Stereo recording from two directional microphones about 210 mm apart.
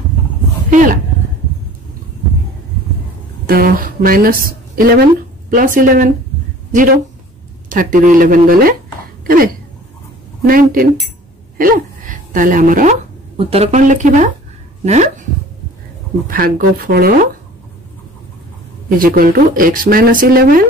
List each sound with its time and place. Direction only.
0.7 s speech: 35° right (ahead or behind)
3.4 s a woman's voice: 45° right (ahead or behind)
13.4 s speech: 30° right (ahead or behind)
16.3 s speech: 45° right (ahead or behind)
18.9 s speech: 45° right (ahead or behind)